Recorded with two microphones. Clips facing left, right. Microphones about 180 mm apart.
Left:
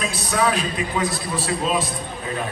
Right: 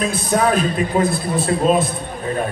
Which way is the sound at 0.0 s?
50° right (ahead or behind).